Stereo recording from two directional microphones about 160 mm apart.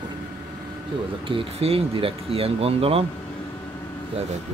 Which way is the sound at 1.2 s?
35° right (ahead or behind).